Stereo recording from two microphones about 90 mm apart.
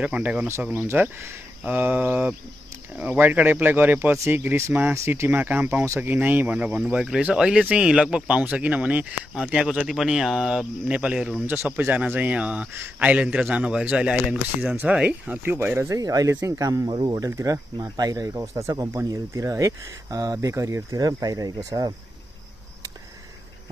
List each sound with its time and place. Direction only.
0.0 s speech: 15° right (ahead or behind)
11.4 s speech: 25° right (ahead or behind)
15.9 s speech: 40° right (ahead or behind)
16.8 s speech: 55° right (ahead or behind)
17.2 s speech: 40° right (ahead or behind)